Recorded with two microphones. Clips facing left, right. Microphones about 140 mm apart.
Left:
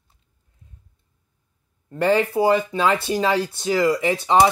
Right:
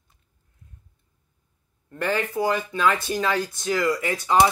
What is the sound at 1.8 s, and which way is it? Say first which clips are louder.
Speech: left 7 dB; 30° left (ahead or behind).